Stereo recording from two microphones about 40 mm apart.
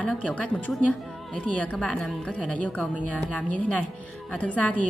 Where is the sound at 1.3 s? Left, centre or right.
Left.